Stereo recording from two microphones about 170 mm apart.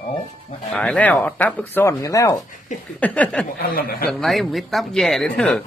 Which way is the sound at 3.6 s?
60° left (ahead or behind).